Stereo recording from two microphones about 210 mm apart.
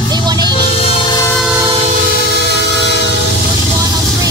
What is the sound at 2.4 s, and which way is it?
Train, 55° right (ahead or behind).